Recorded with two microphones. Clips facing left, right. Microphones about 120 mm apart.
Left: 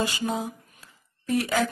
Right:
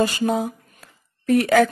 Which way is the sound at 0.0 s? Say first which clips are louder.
Right 7 dB; 50° right (ahead or behind).